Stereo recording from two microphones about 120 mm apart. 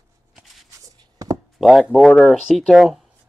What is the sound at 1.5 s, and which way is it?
Chop, centre (ahead or behind).